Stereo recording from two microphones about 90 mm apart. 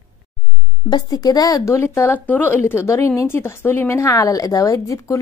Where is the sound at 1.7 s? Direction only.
30° left (ahead or behind).